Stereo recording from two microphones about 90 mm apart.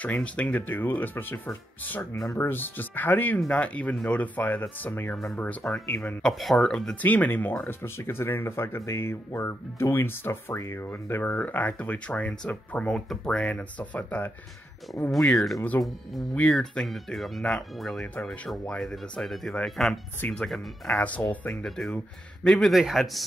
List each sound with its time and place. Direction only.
0.0 s speech: 15° left (ahead or behind)
6.2 s speech: 5° left (ahead or behind)
7.0 s speech: 20° left (ahead or behind)
12.9 s speech: 5° left (ahead or behind)
15.0 s speech: centre (ahead or behind)
18.2 s speech: 15° left (ahead or behind)
20.2 s speech: 15° left (ahead or behind)
20.4 s speech: 5° left (ahead or behind)
20.9 s speech: 15° left (ahead or behind)
21.6 s speech: centre (ahead or behind)